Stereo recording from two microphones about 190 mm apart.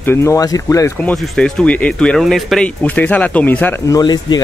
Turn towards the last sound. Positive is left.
turn(degrees=20)  # may be behind; listen again after turning